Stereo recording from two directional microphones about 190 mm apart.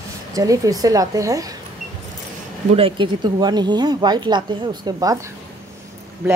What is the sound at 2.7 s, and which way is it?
Speech, 30° right (ahead or behind).